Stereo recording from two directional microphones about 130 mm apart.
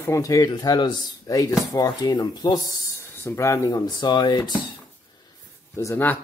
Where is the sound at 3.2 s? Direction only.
25° left (ahead or behind).